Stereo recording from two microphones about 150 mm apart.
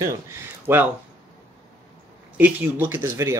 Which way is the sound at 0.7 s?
15° right (ahead or behind).